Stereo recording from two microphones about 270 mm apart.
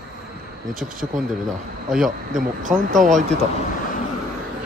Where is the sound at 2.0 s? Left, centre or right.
Right.